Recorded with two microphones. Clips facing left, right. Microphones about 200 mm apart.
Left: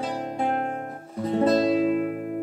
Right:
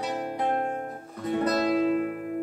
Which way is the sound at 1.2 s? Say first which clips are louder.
Left 4 dB; 25° left (ahead or behind).